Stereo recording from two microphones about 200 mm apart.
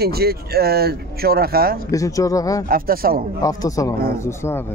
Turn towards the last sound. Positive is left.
turn(degrees=10)  # may be behind; listen again after turning